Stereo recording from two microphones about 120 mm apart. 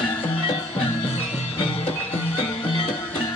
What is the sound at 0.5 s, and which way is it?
Music, 50° left (ahead or behind).